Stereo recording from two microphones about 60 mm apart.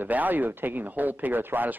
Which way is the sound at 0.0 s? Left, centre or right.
Right.